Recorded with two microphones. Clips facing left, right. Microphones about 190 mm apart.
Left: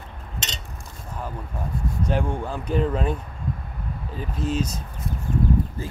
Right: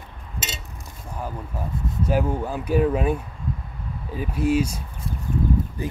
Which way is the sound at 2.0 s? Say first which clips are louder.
Right 3 dB; 5° right (ahead or behind).